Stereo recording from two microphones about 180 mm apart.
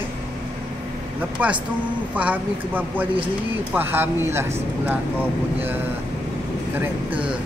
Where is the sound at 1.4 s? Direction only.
10° right (ahead or behind).